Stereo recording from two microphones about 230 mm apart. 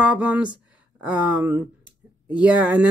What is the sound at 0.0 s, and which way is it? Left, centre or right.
A man's voice, centre.